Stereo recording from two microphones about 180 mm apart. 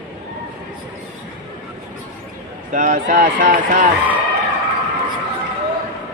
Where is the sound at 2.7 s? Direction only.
50° right (ahead or behind).